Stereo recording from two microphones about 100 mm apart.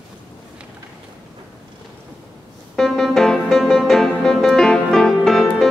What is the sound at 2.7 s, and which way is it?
Music, 5° left (ahead or behind).